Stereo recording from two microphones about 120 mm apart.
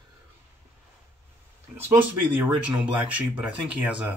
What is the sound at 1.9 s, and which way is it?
Speech, 15° right (ahead or behind).